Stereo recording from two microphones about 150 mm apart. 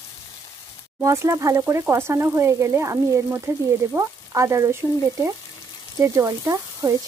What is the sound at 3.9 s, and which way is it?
Frying, 20° right (ahead or behind).